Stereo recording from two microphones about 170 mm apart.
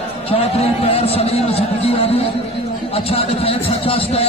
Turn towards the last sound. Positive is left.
turn(degrees=35)  # may be behind; listen again after turning